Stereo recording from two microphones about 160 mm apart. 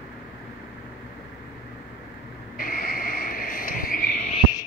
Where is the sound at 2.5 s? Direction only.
60° left (ahead or behind).